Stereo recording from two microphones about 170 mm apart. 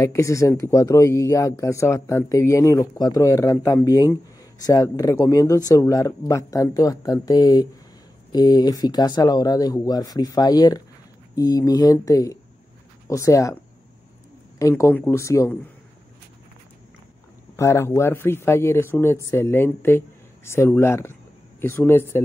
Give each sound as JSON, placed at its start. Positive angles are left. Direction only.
{"t": 0.0, "sound": "speech", "side_deg": 20}
{"t": 14.8, "sound": "speech", "side_deg": 15}
{"t": 17.6, "sound": "speech", "side_deg": 15}